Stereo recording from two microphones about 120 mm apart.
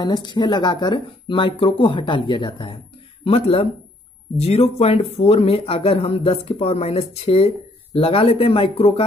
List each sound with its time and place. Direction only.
0.0 s speech: 40° left (ahead or behind)